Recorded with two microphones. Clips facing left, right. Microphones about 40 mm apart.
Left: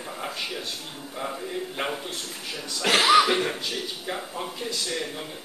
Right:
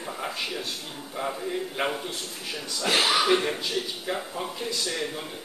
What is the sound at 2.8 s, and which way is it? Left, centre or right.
Speech, left.